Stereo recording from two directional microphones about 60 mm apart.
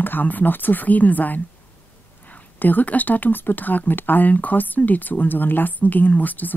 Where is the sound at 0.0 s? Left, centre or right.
Left.